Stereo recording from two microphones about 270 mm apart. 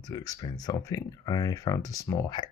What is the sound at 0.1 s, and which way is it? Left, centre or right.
Speech, centre.